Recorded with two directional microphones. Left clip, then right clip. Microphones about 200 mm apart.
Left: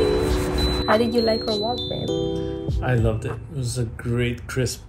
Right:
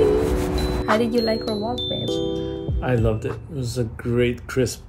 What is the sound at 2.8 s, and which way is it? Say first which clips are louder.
Speech: right 2 dB; 35° right (ahead or behind).